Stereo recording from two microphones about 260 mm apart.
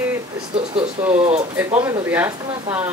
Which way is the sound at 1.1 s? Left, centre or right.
Right.